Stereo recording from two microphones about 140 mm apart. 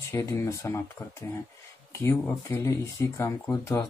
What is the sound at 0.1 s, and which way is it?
Speech, 20° left (ahead or behind).